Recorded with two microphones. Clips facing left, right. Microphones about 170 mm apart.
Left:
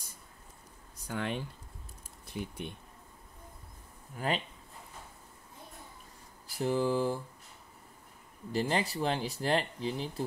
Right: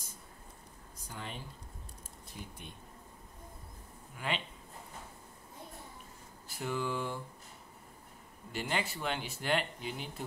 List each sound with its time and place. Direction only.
1.0 s speech: 70° left (ahead or behind)
2.3 s speech: 90° left
4.2 s speech: 40° left (ahead or behind)
6.4 s a sound: 35° left (ahead or behind)
8.5 s speech: 35° left (ahead or behind)